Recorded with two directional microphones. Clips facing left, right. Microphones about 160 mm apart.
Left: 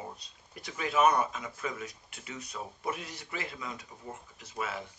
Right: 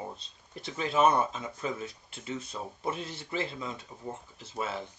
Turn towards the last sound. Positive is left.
turn(degrees=-30)  # may be behind; listen again after turning